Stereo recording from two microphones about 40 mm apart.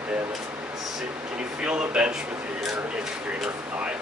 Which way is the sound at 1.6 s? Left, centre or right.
Right.